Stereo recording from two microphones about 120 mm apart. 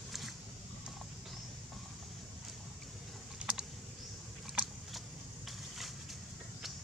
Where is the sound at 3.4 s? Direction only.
10° right (ahead or behind).